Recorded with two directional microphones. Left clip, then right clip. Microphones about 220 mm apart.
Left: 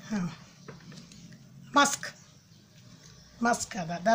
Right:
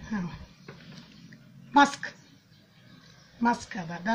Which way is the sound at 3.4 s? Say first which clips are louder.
Even; 55° left (ahead or behind).